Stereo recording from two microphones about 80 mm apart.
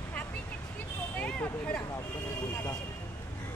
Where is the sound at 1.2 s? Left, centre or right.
Centre.